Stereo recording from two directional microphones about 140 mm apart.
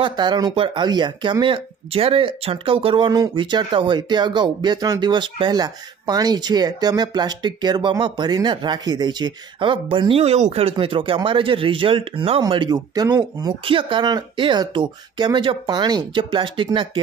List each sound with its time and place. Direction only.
0.0 s speech: 30° right (ahead or behind)